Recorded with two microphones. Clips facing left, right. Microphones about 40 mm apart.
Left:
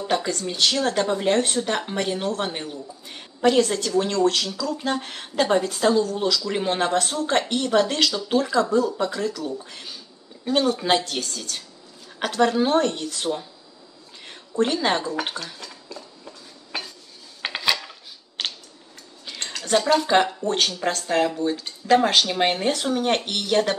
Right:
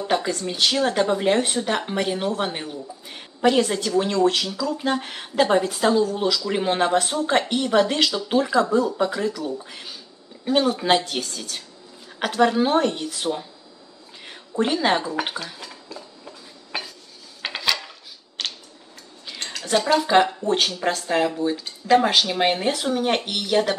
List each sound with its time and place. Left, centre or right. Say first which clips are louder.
0.0 s speech: right 1 dB; centre
14.2 s dishes: left 1 dB; centre
17.4 s dishes: left 1 dB; centre
18.4 s tick-tock: left 1 dB; centre
19.2 s speech: even; centre